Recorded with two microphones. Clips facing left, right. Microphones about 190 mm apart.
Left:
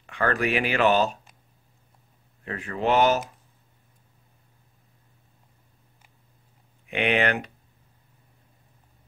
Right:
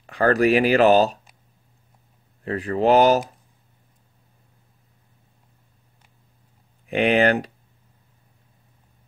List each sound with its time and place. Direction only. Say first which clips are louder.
0.0 s speech: right 7 dB; 35° right (ahead or behind)
2.4 s speech: right 7 dB; 35° right (ahead or behind)
6.9 s speech: right 6 dB; 35° right (ahead or behind)